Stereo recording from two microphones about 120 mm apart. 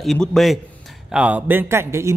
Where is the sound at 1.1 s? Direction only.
10° right (ahead or behind).